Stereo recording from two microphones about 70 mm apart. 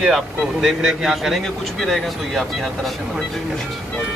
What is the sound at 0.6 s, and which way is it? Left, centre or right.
A man's voice, centre.